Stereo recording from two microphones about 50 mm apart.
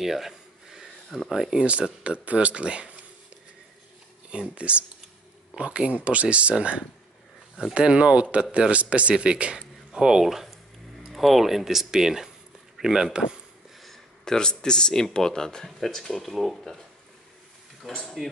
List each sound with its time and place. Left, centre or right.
0.0 s a sound: centre
1.3 s speech: centre
4.3 s speech: right
10.2 s a man's voice: centre
13.8 s speech: centre
17.8 s speech: centre